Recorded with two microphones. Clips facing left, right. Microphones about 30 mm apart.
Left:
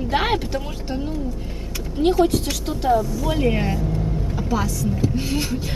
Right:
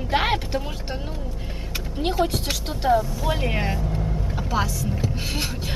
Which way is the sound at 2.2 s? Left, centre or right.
Centre.